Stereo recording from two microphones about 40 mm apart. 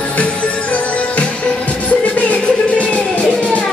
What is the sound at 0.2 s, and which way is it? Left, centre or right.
Music, left.